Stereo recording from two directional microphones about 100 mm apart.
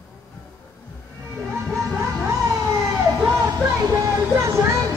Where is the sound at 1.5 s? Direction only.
25° right (ahead or behind).